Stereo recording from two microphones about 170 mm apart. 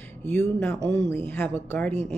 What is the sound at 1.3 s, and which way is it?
Speech, 10° left (ahead or behind).